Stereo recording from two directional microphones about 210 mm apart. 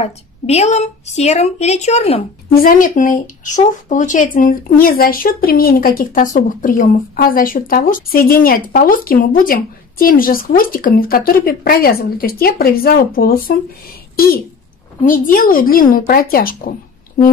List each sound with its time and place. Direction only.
0.0 s speech: 30° left (ahead or behind)
2.6 s speech: 40° left (ahead or behind)
15.0 s speech: 40° left (ahead or behind)